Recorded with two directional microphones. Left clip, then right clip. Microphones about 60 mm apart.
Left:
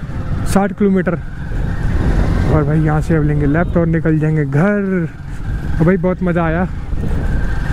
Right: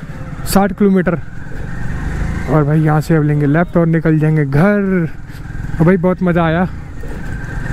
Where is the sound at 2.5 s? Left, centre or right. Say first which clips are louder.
Right 4 dB; right.